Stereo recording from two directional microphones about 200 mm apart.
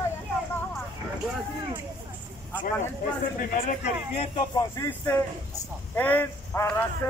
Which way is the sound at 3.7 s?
30° left (ahead or behind).